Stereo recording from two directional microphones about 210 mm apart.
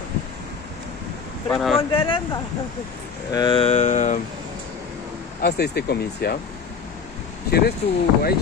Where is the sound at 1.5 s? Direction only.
Centre (ahead or behind).